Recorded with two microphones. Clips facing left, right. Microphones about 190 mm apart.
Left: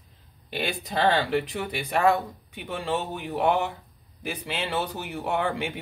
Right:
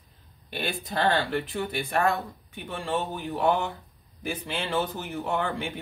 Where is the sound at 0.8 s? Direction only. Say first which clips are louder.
Left 2 dB; 15° left (ahead or behind).